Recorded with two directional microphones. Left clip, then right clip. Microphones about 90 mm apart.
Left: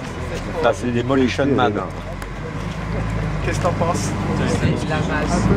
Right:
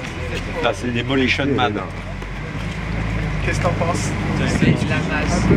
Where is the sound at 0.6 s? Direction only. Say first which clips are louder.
Left 3 dB; 55° left (ahead or behind).